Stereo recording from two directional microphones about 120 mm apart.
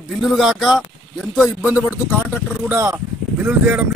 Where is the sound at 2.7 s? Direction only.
20° right (ahead or behind).